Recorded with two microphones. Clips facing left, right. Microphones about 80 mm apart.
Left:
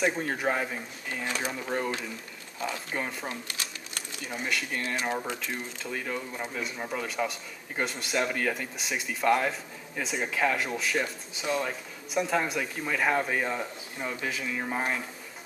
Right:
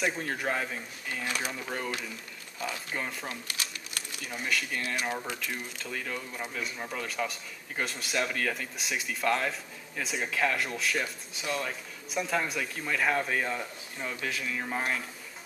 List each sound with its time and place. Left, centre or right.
0.0 s speech: centre
4.3 s speech: centre
5.1 s speech: left
5.8 s speech: centre